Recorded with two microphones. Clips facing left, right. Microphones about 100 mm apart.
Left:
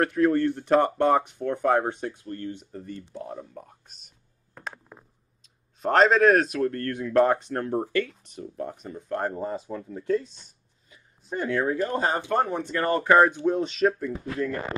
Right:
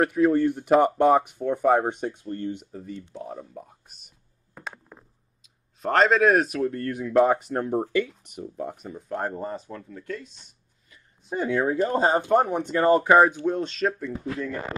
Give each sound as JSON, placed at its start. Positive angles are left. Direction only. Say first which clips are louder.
{"t": 0.0, "sound": "speech", "louder": "right 1 dB", "side_deg": -5}
{"t": 2.7, "sound": "speech", "louder": "right 1 dB", "side_deg": 0}
{"t": 9.8, "sound": "speech", "louder": "left 9 dB", "side_deg": 30}
{"t": 11.2, "sound": "speech", "louder": "right 2 dB", "side_deg": -5}
{"t": 11.7, "sound": "speech", "louder": "right 4 dB", "side_deg": -25}
{"t": 12.3, "sound": "speech", "louder": "right 4 dB", "side_deg": -10}
{"t": 13.5, "sound": "speech", "louder": "left 2 dB", "side_deg": 5}